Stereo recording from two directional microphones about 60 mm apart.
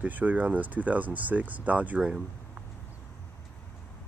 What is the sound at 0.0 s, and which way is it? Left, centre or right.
Speech, right.